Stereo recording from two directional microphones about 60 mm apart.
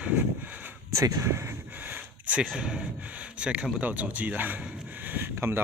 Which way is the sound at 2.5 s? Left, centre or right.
Centre.